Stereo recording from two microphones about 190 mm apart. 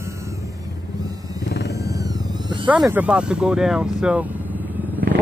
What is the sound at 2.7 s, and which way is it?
Speech, 5° right (ahead or behind).